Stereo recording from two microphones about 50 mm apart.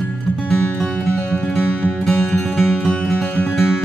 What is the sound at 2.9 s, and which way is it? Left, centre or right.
Music, centre.